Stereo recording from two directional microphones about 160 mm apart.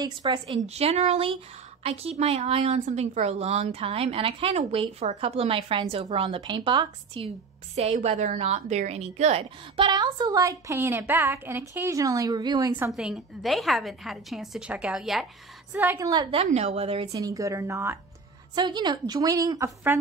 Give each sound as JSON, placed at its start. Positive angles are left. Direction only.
{"t": 0.0, "sound": "a woman's voice", "side_deg": -25}
{"t": 0.7, "sound": "a woman's voice", "side_deg": -40}
{"t": 7.2, "sound": "a woman's voice", "side_deg": -40}
{"t": 12.9, "sound": "a woman's voice", "side_deg": 0}
{"t": 16.1, "sound": "a woman's voice", "side_deg": -30}
{"t": 16.4, "sound": "a woman's voice", "side_deg": -45}
{"t": 17.1, "sound": "a woman's voice", "side_deg": -20}